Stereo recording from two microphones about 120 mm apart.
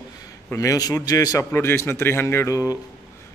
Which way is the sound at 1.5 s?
20° left (ahead or behind).